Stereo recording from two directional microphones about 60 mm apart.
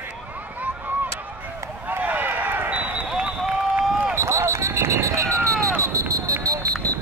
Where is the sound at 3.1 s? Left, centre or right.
Centre.